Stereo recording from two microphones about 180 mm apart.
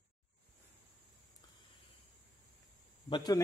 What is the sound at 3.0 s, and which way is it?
Speech, 25° left (ahead or behind).